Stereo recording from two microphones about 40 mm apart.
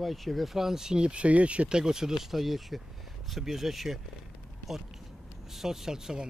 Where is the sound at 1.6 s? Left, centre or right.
Centre.